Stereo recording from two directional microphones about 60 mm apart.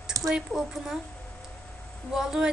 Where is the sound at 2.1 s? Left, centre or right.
Centre.